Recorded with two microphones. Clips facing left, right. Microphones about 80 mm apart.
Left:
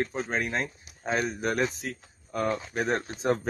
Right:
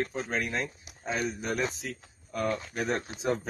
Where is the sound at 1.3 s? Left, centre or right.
Left.